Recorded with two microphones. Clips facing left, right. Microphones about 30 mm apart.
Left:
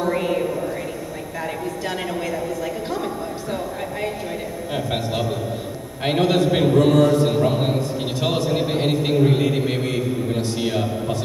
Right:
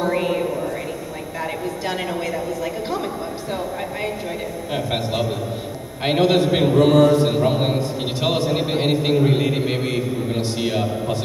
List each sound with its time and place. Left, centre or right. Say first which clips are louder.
0.0 s a sound: right 1 dB; centre
4.7 s a man's voice: right 1 dB; centre
6.2 s a man's voice: right 2 dB; right
6.5 s a man's voice: right 1 dB; centre